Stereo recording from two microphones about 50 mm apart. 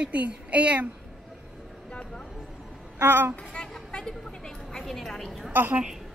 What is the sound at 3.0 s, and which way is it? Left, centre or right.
Speech, right.